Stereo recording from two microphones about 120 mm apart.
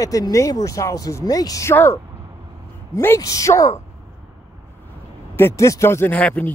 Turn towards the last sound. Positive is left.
turn(degrees=10)  # may be behind; listen again after turning